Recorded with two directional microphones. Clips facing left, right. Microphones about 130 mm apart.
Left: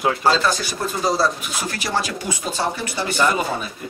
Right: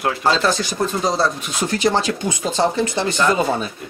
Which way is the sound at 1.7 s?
20° right (ahead or behind).